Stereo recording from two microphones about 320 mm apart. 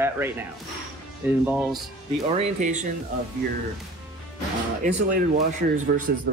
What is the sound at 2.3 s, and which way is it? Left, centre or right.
Speech, right.